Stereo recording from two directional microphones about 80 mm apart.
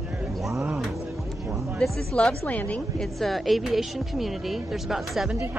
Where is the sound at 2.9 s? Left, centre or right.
Centre.